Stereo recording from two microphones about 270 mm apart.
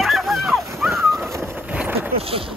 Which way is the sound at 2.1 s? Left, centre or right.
Right.